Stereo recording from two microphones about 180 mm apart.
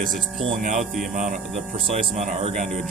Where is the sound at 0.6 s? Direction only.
45° right (ahead or behind).